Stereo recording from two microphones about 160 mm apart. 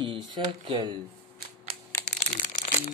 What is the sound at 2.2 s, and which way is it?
Crumpling, 50° left (ahead or behind).